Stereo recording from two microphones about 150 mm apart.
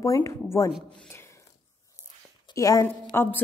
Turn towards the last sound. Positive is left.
turn(degrees=15)  # may be behind; listen again after turning